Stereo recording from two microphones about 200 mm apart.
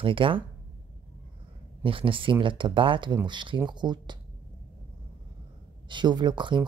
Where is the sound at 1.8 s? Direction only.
25° right (ahead or behind).